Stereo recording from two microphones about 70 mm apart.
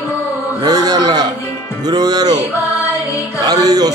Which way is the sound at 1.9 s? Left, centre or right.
Right.